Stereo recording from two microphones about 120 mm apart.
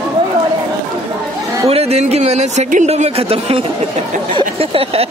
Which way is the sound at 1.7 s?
60° right (ahead or behind).